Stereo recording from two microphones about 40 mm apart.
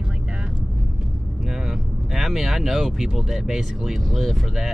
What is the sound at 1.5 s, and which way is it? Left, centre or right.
Speech, centre.